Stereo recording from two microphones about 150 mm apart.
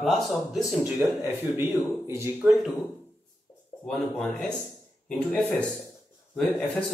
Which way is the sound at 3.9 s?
5° left (ahead or behind).